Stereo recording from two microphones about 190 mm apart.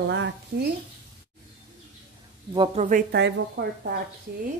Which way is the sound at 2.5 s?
25° right (ahead or behind).